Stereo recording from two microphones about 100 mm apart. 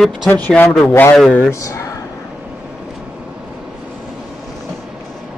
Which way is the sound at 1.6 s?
35° left (ahead or behind).